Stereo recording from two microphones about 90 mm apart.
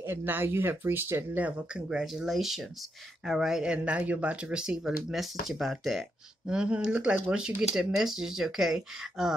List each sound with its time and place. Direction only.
0.0 s speech: 25° right (ahead or behind)
1.7 s speech: 10° right (ahead or behind)
6.4 s speech: 10° right (ahead or behind)